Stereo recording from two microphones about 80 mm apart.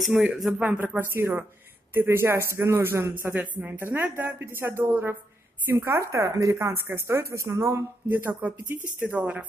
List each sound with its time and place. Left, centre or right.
0.1 s speech: centre
0.6 s speech: right
3.3 s speech: right